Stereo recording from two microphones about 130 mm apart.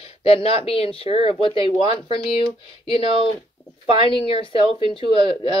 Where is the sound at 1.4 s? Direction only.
45° left (ahead or behind).